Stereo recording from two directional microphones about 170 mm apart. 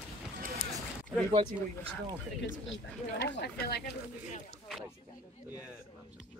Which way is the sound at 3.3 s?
75° left (ahead or behind).